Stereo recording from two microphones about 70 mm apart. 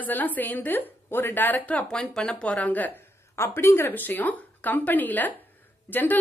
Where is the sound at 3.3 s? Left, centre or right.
Left.